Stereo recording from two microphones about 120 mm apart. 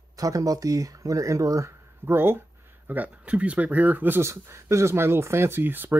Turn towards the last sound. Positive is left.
turn(degrees=-15)  # may be behind; listen again after turning